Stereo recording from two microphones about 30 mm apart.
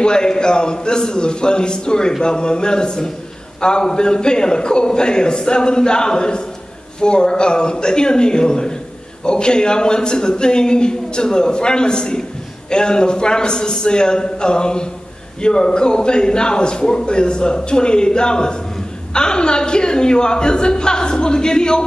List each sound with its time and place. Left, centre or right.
0.0 s a man's voice: left